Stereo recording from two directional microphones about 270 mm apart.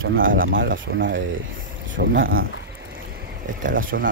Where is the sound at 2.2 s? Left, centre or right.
Right.